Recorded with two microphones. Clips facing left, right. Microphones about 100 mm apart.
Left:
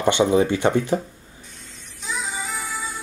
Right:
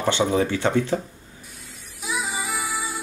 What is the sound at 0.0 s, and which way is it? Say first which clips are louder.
Speech: left 3 dB; 15° left (ahead or behind).